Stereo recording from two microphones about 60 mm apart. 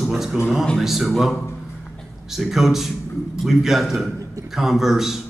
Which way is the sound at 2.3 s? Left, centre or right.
Centre.